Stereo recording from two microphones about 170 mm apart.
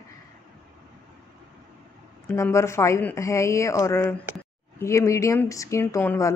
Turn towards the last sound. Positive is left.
turn(degrees=15)  # may be behind; listen again after turning